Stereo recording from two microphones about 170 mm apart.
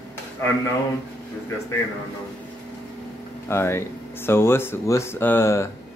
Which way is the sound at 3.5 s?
15° left (ahead or behind).